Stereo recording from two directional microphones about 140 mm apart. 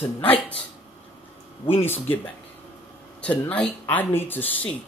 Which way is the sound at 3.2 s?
10° left (ahead or behind).